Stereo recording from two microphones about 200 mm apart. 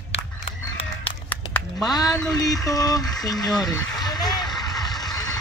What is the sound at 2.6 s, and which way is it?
Speech, 20° left (ahead or behind).